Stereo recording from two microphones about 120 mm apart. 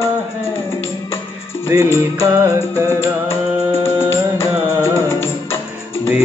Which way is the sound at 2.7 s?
20° left (ahead or behind).